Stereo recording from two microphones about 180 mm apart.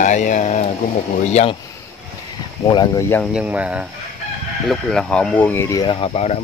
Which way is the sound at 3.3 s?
5° right (ahead or behind).